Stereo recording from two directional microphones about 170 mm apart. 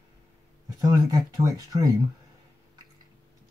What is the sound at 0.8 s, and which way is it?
Speech, 20° right (ahead or behind).